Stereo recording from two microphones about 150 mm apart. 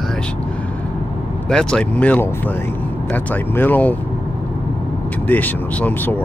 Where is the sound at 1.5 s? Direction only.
5° left (ahead or behind).